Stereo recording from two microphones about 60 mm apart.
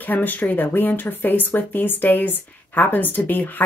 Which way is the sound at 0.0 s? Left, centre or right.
Left.